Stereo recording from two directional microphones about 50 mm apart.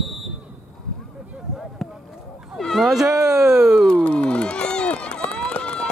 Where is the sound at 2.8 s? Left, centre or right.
Centre.